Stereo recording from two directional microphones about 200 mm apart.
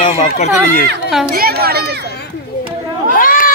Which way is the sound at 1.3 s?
50° right (ahead or behind).